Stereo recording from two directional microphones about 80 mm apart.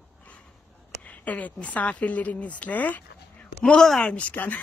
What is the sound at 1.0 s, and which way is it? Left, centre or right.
Speech, centre.